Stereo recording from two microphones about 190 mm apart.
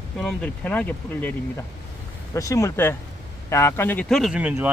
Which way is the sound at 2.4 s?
15° left (ahead or behind).